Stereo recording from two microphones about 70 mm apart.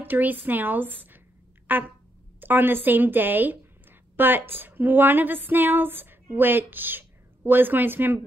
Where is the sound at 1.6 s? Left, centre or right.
Right.